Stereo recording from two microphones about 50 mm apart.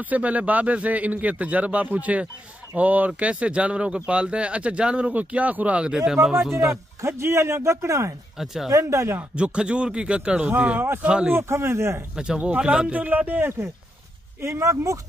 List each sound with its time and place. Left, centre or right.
0.0 s speech: right
5.8 s speech: centre
7.0 s speech: right
8.7 s speech: right
9.3 s speech: right
11.2 s speech: right
12.2 s speech: right
12.9 s speech: right
14.4 s speech: right